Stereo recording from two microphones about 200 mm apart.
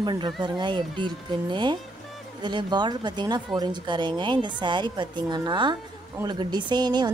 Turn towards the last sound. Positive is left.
turn(degrees=-20)  # may be behind; listen again after turning